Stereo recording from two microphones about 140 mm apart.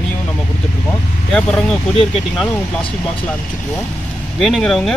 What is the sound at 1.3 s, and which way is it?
Speech, 5° left (ahead or behind).